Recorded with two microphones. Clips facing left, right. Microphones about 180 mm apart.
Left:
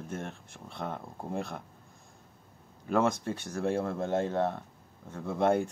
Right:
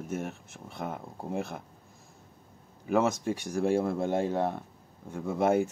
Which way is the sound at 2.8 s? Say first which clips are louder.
Right 1 dB; 10° right (ahead or behind).